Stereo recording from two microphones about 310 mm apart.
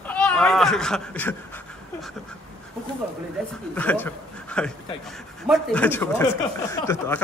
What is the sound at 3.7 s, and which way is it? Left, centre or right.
Speech, centre.